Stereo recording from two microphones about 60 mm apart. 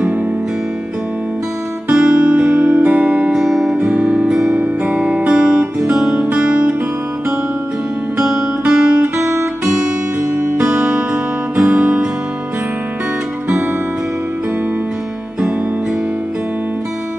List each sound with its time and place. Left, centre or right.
1.9 s music: centre
3.3 s music: centre
3.7 s music: right
4.3 s music: centre
4.6 s music: centre
8.6 s music: centre
10.3 s music: right
10.6 s music: centre